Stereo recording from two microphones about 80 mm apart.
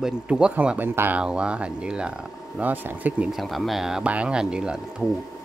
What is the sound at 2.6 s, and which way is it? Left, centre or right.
Speech, right.